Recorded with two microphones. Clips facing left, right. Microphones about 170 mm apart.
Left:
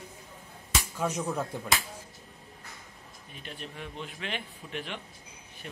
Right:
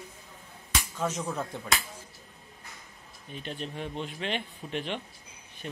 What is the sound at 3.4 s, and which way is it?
A man's voice, 25° right (ahead or behind).